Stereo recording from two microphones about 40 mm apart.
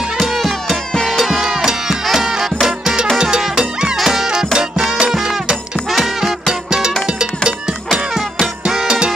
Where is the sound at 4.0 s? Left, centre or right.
Centre.